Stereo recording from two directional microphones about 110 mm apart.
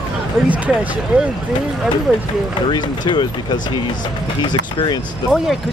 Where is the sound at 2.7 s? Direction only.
45° left (ahead or behind).